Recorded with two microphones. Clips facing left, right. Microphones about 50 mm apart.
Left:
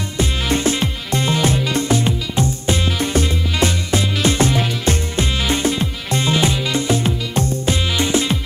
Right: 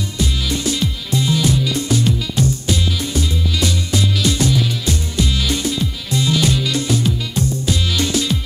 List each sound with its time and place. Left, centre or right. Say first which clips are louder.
0.2 s music: left 3 dB; left